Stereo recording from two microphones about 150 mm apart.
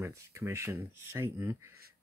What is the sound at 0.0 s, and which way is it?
Speech, 20° right (ahead or behind).